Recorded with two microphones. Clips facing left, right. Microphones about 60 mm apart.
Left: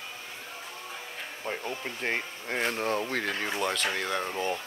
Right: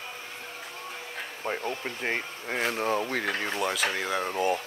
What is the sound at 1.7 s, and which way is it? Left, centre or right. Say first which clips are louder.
Speech: right 1 dB; centre.